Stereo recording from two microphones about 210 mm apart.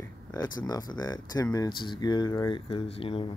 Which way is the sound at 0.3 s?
20° left (ahead or behind).